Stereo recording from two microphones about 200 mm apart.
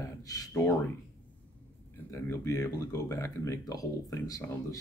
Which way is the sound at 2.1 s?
15° left (ahead or behind).